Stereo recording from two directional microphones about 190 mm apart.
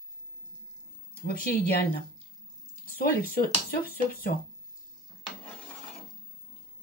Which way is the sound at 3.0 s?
50° left (ahead or behind).